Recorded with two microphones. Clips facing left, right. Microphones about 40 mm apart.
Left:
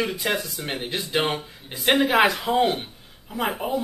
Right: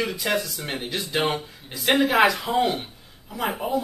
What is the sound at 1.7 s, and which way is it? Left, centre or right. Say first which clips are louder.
Speech: left 1 dB; left.